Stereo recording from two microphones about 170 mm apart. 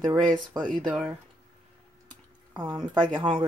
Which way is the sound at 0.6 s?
5° left (ahead or behind).